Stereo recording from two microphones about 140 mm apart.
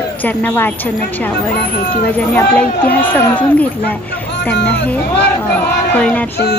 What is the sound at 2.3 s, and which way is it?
Speech, 10° left (ahead or behind).